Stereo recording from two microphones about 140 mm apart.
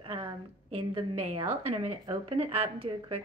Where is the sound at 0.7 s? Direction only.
40° right (ahead or behind).